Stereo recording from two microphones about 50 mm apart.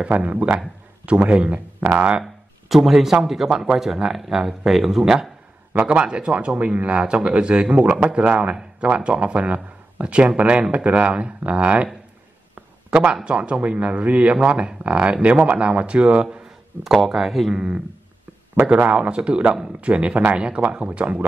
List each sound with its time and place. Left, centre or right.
0.1 s a man's voice: right
2.2 s speech: centre
5.9 s speech: right
12.9 s speech: right
16.8 s speech: centre
17.6 s speech: centre
18.6 s speech: right